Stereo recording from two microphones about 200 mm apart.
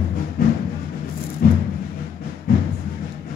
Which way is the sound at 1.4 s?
45° left (ahead or behind).